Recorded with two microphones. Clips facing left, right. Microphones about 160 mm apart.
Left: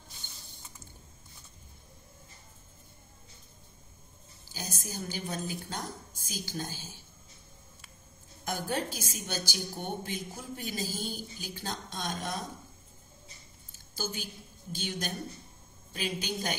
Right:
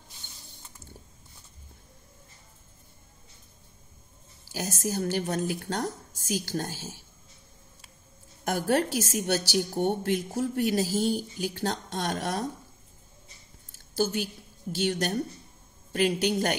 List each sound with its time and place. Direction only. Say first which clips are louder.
4.5 s a woman's voice: right 10 dB; 75° right (ahead or behind)
8.5 s a woman's voice: right 8 dB; 70° right (ahead or behind)
13.9 s a woman's voice: right 10 dB; 70° right (ahead or behind)